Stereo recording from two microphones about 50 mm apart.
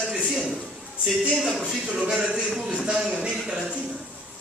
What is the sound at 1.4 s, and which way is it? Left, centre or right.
A man's voice, centre.